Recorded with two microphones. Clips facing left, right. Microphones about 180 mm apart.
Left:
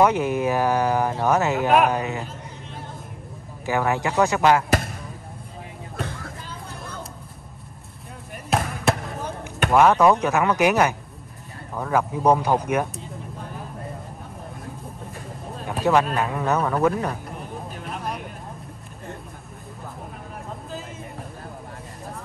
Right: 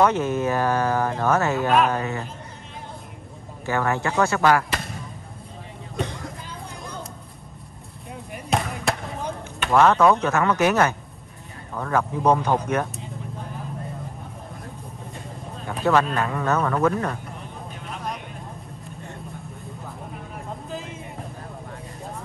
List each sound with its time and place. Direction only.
0.0 s speech: 15° left (ahead or behind)
3.6 s speech: 15° left (ahead or behind)
8.5 s basketball bounce: centre (ahead or behind)
9.7 s speech: 10° left (ahead or behind)
15.8 s speech: 15° left (ahead or behind)
17.8 s vehicle: 5° left (ahead or behind)